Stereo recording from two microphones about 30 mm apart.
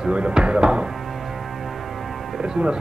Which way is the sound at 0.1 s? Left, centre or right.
Right.